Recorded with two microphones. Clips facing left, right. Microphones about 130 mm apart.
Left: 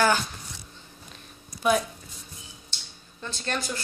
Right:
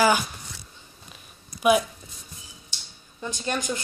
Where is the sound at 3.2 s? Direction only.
15° right (ahead or behind).